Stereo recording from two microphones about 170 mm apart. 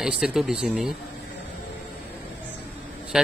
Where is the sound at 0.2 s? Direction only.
5° right (ahead or behind).